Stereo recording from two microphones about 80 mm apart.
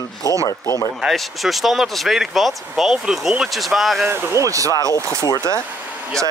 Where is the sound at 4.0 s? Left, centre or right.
Right.